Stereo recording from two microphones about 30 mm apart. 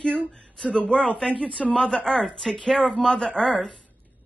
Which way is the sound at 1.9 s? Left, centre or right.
Centre.